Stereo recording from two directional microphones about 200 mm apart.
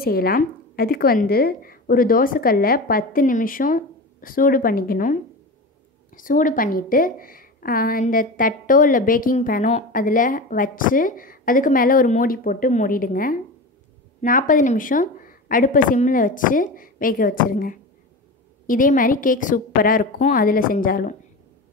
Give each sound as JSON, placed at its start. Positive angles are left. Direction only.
{"t": 0.0, "sound": "a woman's voice", "side_deg": 50}